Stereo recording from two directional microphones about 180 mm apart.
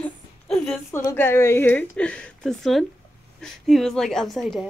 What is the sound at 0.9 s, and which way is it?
Speech, 15° left (ahead or behind).